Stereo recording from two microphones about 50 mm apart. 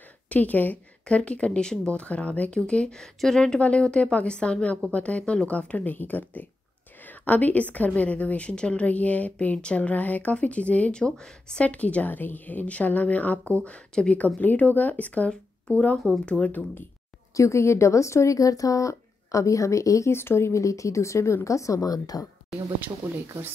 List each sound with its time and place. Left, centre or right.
0.3 s speech: left
1.0 s a woman's voice: left
11.1 s speech: centre
11.6 s a woman's voice: left
17.4 s speech: left
20.2 s speech: left
21.5 s speech: left